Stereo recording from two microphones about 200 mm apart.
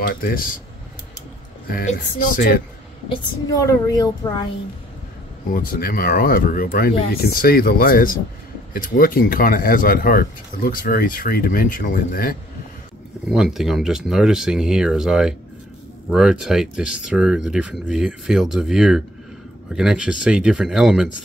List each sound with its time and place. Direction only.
0.0 s speech: 45° left (ahead or behind)
1.7 s speech: 45° left (ahead or behind)
3.1 s a woman's voice: 15° left (ahead or behind)
5.5 s speech: 45° left (ahead or behind)
13.3 s speech: centre (ahead or behind)